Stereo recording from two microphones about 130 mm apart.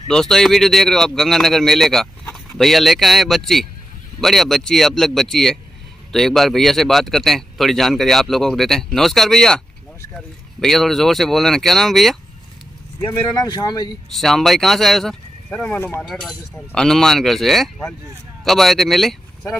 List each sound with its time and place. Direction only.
0.1 s speech: 5° left (ahead or behind)
13.3 s speech: 35° left (ahead or behind)
14.1 s speech: centre (ahead or behind)